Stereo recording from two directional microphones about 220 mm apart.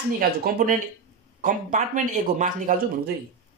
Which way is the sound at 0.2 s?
45° right (ahead or behind).